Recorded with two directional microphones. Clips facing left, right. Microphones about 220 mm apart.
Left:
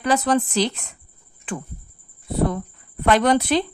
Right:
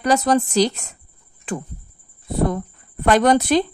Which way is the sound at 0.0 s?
40° right (ahead or behind).